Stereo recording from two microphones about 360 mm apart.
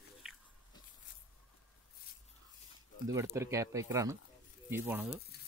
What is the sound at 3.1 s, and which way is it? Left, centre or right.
Speech, centre.